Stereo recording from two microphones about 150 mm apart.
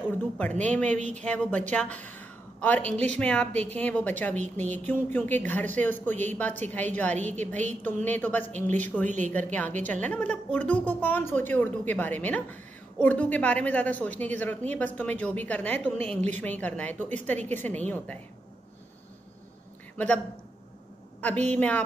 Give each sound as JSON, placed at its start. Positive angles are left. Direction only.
{"t": 0.4, "sound": "a woman's voice", "side_deg": 10}
{"t": 0.9, "sound": "speech", "side_deg": -50}
{"t": 1.2, "sound": "a woman's voice", "side_deg": 10}
{"t": 21.5, "sound": "a woman's voice", "side_deg": 10}